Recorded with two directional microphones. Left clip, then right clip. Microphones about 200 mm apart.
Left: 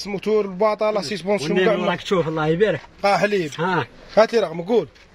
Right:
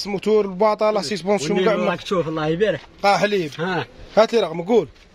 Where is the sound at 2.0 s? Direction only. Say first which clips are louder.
Left 1 dB; 30° left (ahead or behind).